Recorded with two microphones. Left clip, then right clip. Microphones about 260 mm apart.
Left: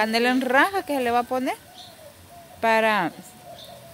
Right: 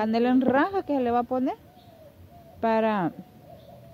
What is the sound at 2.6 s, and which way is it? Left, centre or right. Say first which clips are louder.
Speech: left 4 dB; centre.